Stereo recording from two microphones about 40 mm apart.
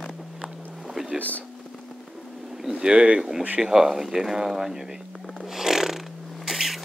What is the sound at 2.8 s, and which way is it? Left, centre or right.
Speech, right.